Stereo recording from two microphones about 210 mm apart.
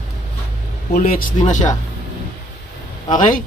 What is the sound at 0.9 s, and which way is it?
Speech, 40° left (ahead or behind).